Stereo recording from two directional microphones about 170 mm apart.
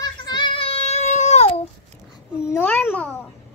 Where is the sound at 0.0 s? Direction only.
25° left (ahead or behind).